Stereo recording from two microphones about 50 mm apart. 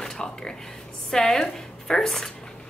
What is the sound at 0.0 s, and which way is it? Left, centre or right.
A woman's voice, centre.